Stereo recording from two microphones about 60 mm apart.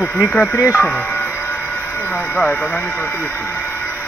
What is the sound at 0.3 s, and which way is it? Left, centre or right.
Speech, left.